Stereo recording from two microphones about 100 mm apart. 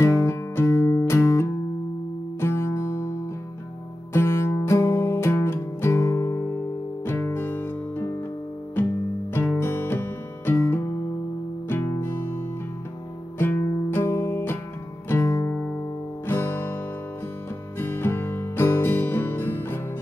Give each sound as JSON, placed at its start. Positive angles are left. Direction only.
{"t": 0.0, "sound": "music", "side_deg": 30}
{"t": 4.1, "sound": "music", "side_deg": 25}
{"t": 9.3, "sound": "music", "side_deg": 25}
{"t": 13.4, "sound": "music", "side_deg": 20}